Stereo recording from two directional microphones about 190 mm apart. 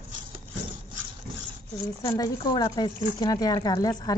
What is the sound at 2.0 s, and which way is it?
Speech, 20° left (ahead or behind).